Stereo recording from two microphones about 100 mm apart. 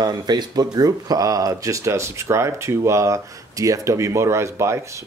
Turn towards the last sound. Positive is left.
turn(degrees=-30)  # may be behind; listen again after turning